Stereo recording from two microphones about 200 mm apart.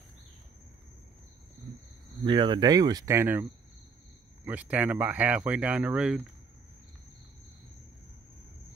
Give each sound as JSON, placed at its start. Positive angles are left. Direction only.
{"t": 2.2, "sound": "speech", "side_deg": -25}
{"t": 4.5, "sound": "speech", "side_deg": -5}